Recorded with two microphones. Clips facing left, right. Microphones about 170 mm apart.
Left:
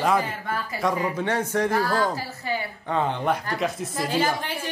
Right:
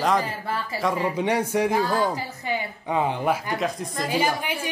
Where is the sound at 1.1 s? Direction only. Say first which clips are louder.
Right 2 dB; 15° right (ahead or behind).